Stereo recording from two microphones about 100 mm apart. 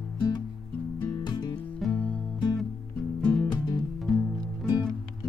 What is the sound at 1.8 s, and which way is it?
Music, 10° left (ahead or behind).